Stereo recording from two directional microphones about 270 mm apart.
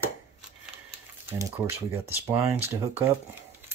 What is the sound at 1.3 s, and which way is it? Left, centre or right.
Speech, centre.